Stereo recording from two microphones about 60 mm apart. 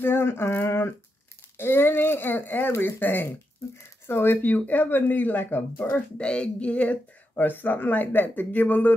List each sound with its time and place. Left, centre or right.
0.0 s a sound: left
1.6 s speech: left
6.2 s speech: centre